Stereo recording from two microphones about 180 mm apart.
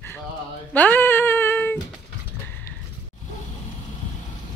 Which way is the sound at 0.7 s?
10° left (ahead or behind).